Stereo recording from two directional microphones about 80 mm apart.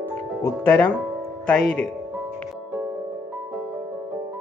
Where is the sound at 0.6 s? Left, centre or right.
Centre.